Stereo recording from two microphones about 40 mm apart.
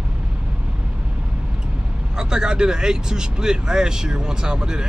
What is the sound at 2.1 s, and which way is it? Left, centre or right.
Speech, centre.